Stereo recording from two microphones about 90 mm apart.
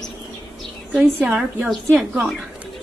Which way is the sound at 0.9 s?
10° right (ahead or behind).